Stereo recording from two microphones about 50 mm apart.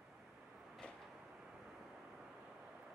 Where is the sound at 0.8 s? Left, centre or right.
Left.